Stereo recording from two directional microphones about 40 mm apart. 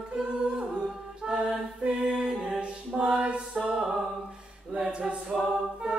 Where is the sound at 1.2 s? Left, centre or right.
Centre.